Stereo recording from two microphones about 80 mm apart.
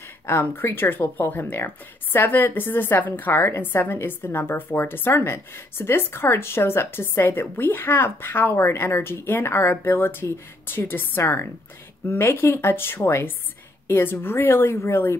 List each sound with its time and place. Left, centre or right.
0.3 s a woman's voice: left